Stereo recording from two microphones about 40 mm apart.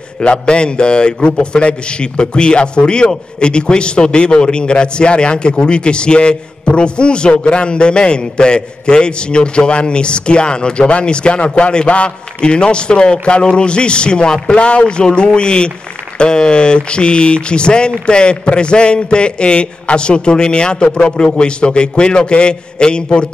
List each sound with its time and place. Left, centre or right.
0.2 s a man's voice: left